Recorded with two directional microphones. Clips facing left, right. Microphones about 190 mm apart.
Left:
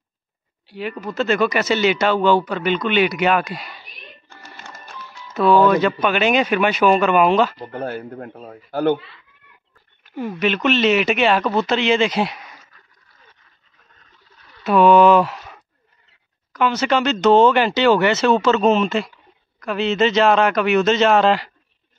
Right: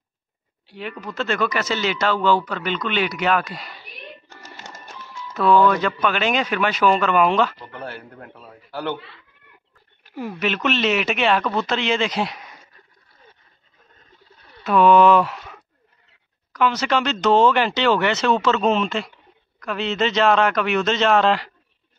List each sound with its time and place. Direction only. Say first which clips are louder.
0.7 s speech: left 4 dB; 5° left (ahead or behind)
4.3 s typewriter: even; 20° right (ahead or behind)
5.6 s speech: left 3 dB; 15° left (ahead or behind)
7.5 s speech: left 7 dB; 45° left (ahead or behind)
8.4 s speech: left 8 dB; 50° left (ahead or behind)
10.1 s speech: left 4 dB; 5° right (ahead or behind)
12.7 s a sound: right 2 dB; 30° right (ahead or behind)
14.6 s speech: left 2 dB; 5° left (ahead or behind)
16.5 s speech: left 2 dB; centre (ahead or behind)